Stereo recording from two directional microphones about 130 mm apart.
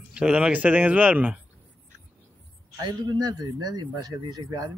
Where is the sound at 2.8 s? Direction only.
35° right (ahead or behind).